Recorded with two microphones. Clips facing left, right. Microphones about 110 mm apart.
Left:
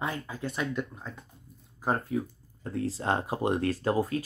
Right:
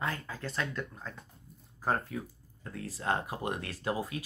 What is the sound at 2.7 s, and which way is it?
Speech, 30° left (ahead or behind).